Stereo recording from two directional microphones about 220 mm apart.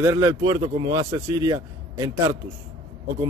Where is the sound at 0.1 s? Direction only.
15° right (ahead or behind).